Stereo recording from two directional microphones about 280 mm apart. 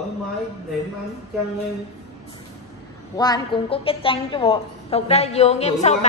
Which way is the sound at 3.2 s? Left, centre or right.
Centre.